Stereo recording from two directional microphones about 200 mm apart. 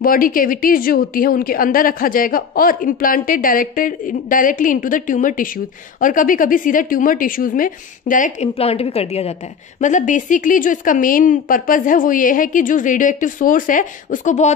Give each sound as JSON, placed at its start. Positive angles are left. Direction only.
{"t": 0.0, "sound": "a woman's voice", "side_deg": 45}